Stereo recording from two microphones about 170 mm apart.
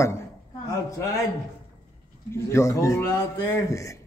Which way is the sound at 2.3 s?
15° left (ahead or behind).